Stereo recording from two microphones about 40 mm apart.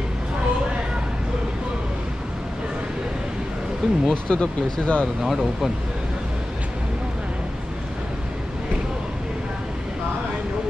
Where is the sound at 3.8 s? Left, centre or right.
Centre.